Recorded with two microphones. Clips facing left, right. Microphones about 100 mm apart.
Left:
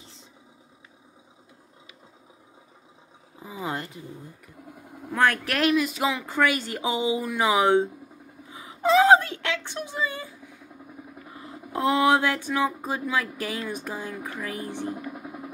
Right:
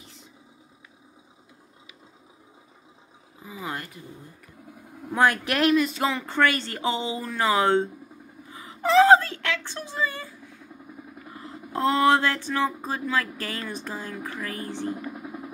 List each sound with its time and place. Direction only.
3.4 s speech: 25° left (ahead or behind)
5.1 s speech: 10° right (ahead or behind)
5.4 s a sound: centre (ahead or behind)